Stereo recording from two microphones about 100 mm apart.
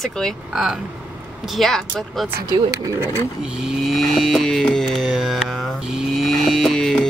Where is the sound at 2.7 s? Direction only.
30° right (ahead or behind).